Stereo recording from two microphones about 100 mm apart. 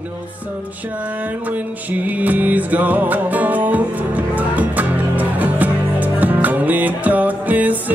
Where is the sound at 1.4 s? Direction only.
15° right (ahead or behind).